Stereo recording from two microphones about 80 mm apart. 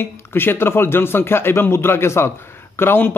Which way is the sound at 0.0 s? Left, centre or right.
Left.